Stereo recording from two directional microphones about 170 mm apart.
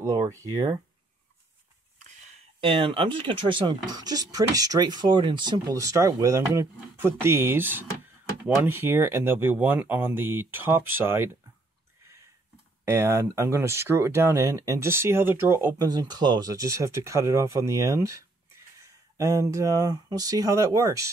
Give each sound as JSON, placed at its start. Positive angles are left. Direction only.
{"t": 0.0, "sound": "speech", "side_deg": -20}
{"t": 2.6, "sound": "speech", "side_deg": -30}
{"t": 12.8, "sound": "speech", "side_deg": -15}